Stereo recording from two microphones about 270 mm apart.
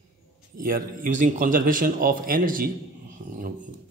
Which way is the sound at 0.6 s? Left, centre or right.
Right.